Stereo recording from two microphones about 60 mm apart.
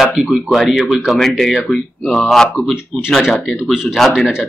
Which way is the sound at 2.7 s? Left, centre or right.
Centre.